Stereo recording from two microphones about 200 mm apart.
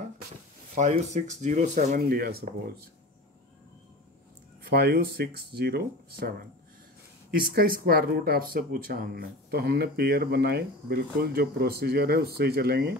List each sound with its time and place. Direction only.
0.7 s speech: 35° right (ahead or behind); by 2.9 s 50° right (ahead or behind)
4.6 s speech: 55° right (ahead or behind)
7.3 s speech: 45° right (ahead or behind)